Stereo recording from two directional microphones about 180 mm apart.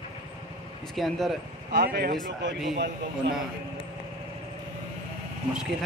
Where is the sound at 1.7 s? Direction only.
55° right (ahead or behind).